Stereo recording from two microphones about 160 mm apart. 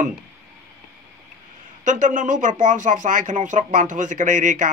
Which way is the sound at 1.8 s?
50° right (ahead or behind).